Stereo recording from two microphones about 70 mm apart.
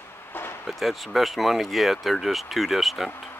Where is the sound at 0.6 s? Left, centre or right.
Centre.